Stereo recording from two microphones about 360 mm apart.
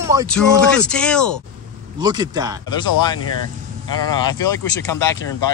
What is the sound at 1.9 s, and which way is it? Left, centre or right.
Speech, centre.